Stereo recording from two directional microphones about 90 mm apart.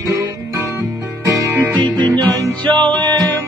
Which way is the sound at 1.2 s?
35° right (ahead or behind).